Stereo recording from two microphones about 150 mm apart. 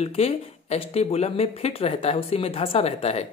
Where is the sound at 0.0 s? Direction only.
45° left (ahead or behind).